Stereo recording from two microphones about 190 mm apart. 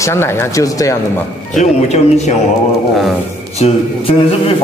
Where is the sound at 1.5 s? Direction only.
40° left (ahead or behind).